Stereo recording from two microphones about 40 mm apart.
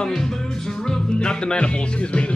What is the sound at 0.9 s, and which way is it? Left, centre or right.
Music, centre.